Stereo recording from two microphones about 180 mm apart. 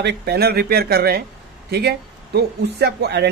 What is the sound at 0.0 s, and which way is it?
Speech, 65° right (ahead or behind).